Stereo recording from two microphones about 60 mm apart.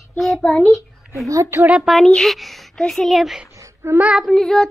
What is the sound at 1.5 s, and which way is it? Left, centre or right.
Speech, right.